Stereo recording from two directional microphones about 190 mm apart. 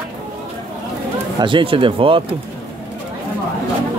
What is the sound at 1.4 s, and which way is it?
Speech, 25° right (ahead or behind).